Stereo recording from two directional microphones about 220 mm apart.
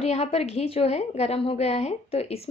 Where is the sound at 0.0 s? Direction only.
30° left (ahead or behind).